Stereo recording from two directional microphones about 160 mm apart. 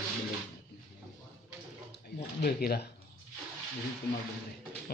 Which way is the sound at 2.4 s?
85° left.